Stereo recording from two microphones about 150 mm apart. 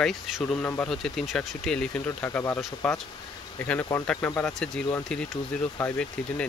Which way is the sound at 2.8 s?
5° left (ahead or behind).